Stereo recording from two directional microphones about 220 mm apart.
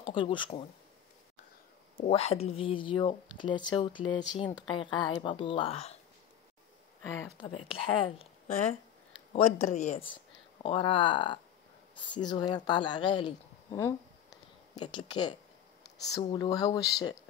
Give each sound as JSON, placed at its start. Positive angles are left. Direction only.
{"t": 0.1, "sound": "speech", "side_deg": 20}
{"t": 2.0, "sound": "speech", "side_deg": 25}
{"t": 7.4, "sound": "speech", "side_deg": 25}
{"t": 15.8, "sound": "a sound", "side_deg": 15}
{"t": 16.3, "sound": "speech", "side_deg": 15}